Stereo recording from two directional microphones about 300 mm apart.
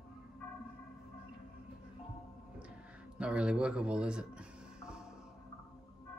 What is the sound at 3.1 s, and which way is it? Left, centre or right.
A man's voice, centre.